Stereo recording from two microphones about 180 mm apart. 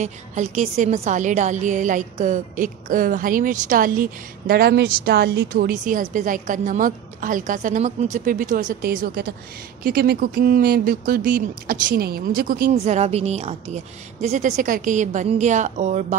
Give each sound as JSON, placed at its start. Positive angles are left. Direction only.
{"t": 0.0, "sound": "a woman's voice", "side_deg": -40}